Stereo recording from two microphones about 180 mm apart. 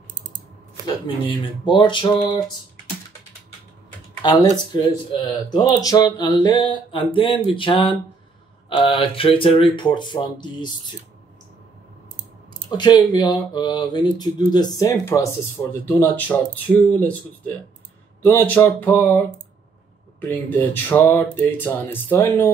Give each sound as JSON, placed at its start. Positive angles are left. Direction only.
{"t": 1.0, "sound": "speech", "side_deg": 30}
{"t": 4.2, "sound": "speech", "side_deg": 25}
{"t": 12.6, "sound": "speech", "side_deg": 25}
{"t": 18.2, "sound": "speech", "side_deg": 10}